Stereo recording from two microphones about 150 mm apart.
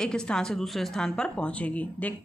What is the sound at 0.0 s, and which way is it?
A woman's voice, 5° left (ahead or behind).